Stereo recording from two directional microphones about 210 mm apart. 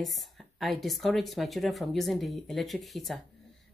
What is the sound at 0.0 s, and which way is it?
Speech, centre (ahead or behind).